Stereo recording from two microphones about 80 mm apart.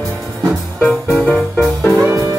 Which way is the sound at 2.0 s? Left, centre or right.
Right.